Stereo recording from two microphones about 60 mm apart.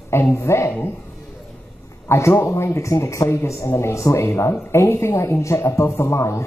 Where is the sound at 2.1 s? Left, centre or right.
Left.